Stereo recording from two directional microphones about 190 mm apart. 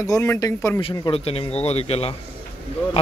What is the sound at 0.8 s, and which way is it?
Speech, 30° left (ahead or behind).